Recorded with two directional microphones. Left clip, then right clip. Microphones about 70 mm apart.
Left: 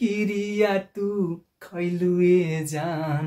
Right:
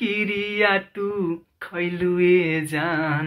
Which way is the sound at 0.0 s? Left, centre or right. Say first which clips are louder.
Right 2 dB; left.